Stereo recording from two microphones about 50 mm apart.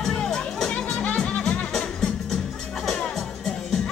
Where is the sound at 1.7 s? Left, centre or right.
Centre.